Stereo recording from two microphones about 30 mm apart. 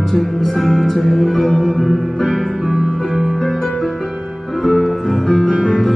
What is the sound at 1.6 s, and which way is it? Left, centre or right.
Music, centre.